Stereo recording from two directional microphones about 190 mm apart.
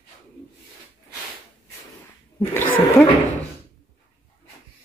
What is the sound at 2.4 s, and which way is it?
Speech, 10° left (ahead or behind).